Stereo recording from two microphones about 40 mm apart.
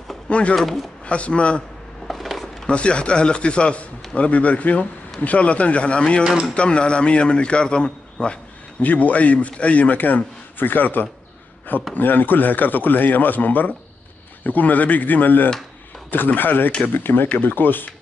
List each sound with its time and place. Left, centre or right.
0.3 s speech: left
0.6 s speech: centre
1.0 s speech: left
2.0 s a sound: centre
2.6 s speech: left
8.8 s a man's voice: left